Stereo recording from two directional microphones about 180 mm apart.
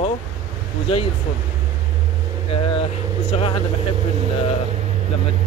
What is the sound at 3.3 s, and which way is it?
Speech, 30° left (ahead or behind).